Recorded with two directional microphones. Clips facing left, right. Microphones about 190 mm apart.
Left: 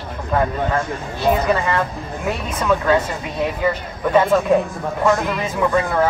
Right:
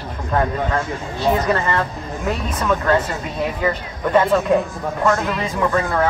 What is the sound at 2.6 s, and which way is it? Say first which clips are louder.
Speech: left 2 dB; centre (ahead or behind).